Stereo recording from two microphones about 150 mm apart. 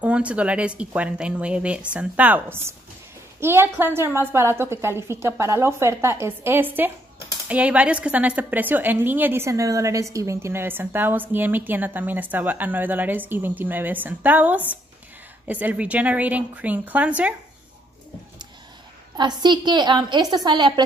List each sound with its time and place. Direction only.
0.0 s a woman's voice: 10° right (ahead or behind)
19.1 s a woman's voice: 30° right (ahead or behind)